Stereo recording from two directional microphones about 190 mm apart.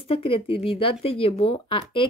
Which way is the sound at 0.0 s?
30° left (ahead or behind).